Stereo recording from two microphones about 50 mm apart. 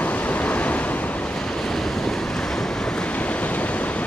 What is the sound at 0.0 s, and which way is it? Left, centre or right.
Vehicle, left.